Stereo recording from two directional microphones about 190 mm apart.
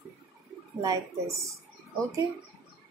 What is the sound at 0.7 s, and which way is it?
Speech, 15° right (ahead or behind).